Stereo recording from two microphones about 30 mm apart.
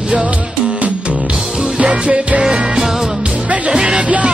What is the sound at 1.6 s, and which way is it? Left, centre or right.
Music, right.